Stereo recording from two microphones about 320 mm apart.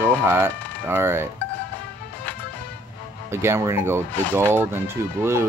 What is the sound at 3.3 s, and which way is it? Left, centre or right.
Speech, centre.